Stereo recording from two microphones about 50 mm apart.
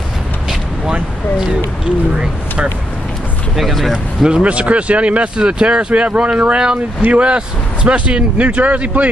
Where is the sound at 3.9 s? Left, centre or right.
Centre.